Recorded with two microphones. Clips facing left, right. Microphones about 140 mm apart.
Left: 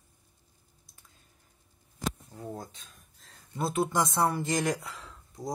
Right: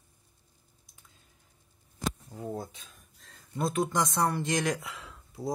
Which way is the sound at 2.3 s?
5° right (ahead or behind).